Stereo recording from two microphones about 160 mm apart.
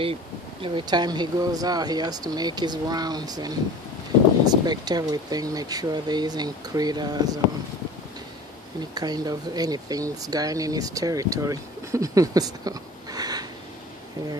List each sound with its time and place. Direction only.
0.0 s speech: 35° right (ahead or behind)
8.9 s speech: 25° right (ahead or behind)